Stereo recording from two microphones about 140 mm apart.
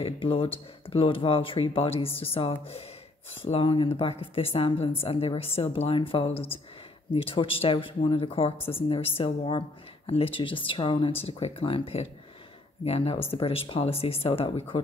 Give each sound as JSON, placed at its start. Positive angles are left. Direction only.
{"t": 0.0, "sound": "speech", "side_deg": 40}
{"t": 6.3, "sound": "speech", "side_deg": 15}
{"t": 7.2, "sound": "speech", "side_deg": 40}
{"t": 8.5, "sound": "speech", "side_deg": 15}
{"t": 8.8, "sound": "speech", "side_deg": 40}